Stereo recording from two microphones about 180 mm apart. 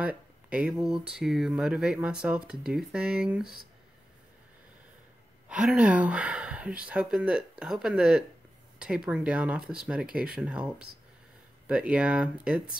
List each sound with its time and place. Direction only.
0.0 s speech: 5° right (ahead or behind)
5.5 s speech: 5° right (ahead or behind)